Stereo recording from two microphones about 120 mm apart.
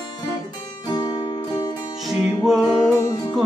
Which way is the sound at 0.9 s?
35° left (ahead or behind).